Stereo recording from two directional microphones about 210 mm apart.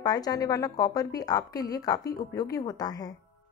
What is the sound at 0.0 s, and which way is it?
A woman's voice, 20° left (ahead or behind).